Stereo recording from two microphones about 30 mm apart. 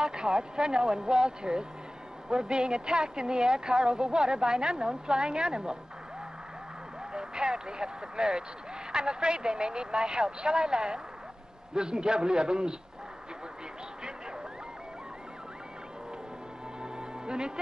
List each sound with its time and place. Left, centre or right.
0.0 s a woman's voice: right
7.1 s a woman's voice: right
16.8 s music: right